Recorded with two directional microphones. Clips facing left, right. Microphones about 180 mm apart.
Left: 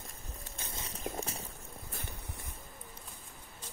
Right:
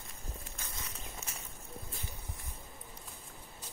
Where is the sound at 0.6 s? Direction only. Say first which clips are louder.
Left 2 dB; 30° left (ahead or behind).